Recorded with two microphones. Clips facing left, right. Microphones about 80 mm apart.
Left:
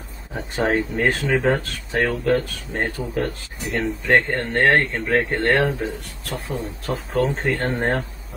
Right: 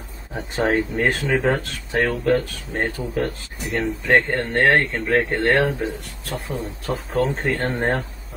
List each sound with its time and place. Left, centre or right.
0.3 s speech: centre